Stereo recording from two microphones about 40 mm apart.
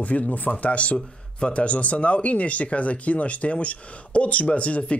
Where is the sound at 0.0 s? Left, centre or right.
Left.